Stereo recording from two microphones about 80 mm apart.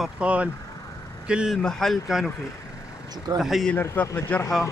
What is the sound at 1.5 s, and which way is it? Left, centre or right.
Speech, centre.